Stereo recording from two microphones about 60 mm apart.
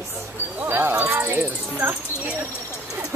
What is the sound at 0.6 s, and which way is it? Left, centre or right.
Speech, right.